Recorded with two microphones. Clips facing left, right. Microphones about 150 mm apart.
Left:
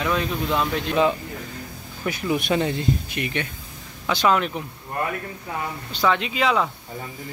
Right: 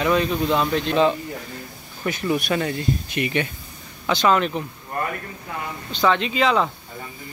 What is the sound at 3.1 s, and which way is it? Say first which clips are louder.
Speech: right 4 dB; 5° right (ahead or behind).